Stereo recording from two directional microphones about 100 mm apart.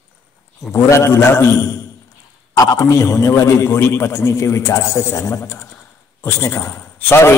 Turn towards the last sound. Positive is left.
turn(degrees=25)  # may be behind; listen again after turning